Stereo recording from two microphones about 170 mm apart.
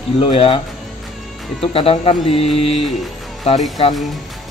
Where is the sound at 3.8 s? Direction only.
35° left (ahead or behind).